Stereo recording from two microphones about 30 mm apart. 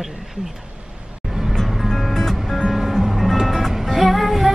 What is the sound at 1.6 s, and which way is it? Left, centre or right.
Music, centre.